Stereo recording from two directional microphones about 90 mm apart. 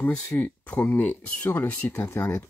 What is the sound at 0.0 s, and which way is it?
Speech, 15° left (ahead or behind).